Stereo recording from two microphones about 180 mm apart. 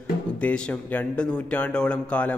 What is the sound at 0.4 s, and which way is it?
A man's voice, 10° left (ahead or behind).